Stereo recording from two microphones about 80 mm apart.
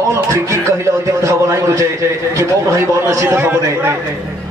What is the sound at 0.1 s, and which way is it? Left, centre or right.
A man's voice, right.